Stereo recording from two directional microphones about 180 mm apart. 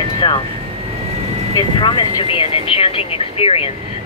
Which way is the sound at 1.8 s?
25° left (ahead or behind).